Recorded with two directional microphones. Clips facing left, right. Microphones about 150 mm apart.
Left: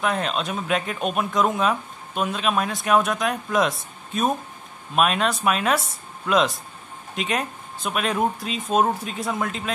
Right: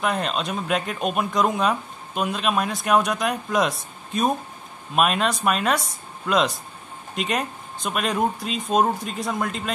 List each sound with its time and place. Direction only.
0.0 s speech: centre (ahead or behind)